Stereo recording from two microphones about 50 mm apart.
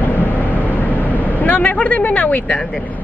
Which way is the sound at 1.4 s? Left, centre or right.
Left.